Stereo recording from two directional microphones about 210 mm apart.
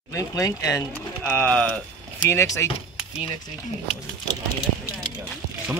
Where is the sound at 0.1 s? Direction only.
15° left (ahead or behind).